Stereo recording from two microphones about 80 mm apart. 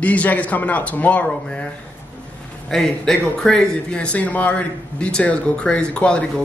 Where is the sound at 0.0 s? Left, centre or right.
Centre.